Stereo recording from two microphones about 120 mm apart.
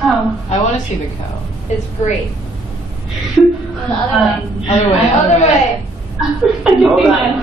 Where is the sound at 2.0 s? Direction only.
70° left (ahead or behind).